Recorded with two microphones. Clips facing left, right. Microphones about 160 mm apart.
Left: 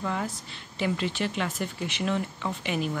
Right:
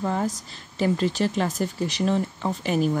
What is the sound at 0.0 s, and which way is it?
Speech, 40° right (ahead or behind).